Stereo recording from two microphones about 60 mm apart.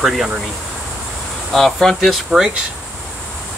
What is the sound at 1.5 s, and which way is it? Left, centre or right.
Speech, centre.